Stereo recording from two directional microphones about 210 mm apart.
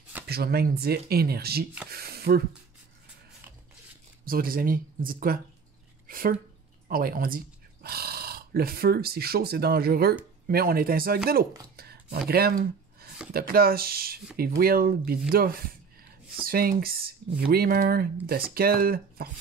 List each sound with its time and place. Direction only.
0.3 s speech: 50° right (ahead or behind)
4.3 s speech: 45° right (ahead or behind)
6.0 s a sound: 40° right (ahead or behind)
6.9 s speech: 45° right (ahead or behind)
11.7 s a sound: 45° right (ahead or behind)
12.3 s speech: 45° right (ahead or behind)